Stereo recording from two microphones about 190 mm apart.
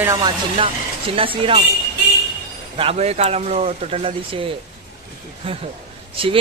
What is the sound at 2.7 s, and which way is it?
Speech, 30° right (ahead or behind).